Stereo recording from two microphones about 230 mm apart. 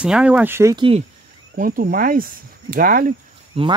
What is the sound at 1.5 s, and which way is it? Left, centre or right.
Speech, right.